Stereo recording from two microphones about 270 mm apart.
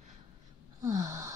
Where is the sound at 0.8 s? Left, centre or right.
Centre.